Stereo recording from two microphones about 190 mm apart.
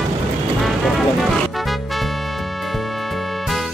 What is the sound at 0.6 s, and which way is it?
Music, centre (ahead or behind).